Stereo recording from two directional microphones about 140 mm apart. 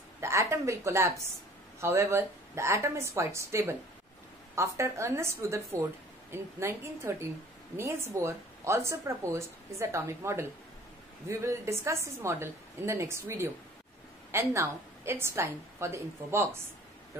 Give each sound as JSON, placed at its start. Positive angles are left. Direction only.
{"t": 0.2, "sound": "a woman's voice", "side_deg": -20}